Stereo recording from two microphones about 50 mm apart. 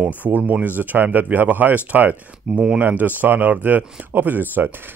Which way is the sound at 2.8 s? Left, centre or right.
Right.